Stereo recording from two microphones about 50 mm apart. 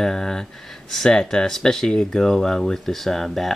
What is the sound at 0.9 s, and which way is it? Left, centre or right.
Speech, centre.